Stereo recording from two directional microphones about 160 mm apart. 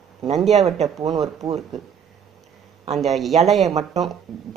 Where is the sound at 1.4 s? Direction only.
Centre (ahead or behind).